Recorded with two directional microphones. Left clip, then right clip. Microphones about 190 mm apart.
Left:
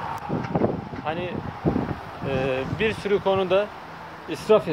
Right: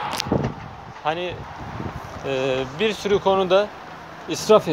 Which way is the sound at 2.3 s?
15° right (ahead or behind).